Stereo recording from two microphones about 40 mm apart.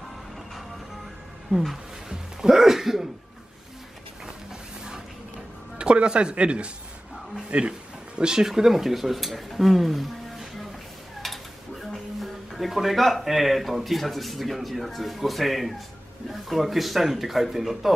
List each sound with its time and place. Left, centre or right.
1.7 s speech: centre
5.8 s speech: right
8.2 s speech: centre
11.2 s a sound: centre
11.9 s speech: centre